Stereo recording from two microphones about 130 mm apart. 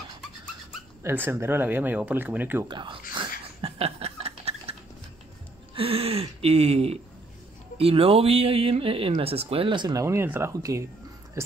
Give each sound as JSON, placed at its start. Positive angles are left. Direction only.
{"t": 1.0, "sound": "speech", "side_deg": -15}
{"t": 2.7, "sound": "chuckle", "side_deg": -40}
{"t": 5.8, "sound": "speech", "side_deg": -45}
{"t": 9.9, "sound": "speech", "side_deg": -20}
{"t": 11.4, "sound": "music", "side_deg": -25}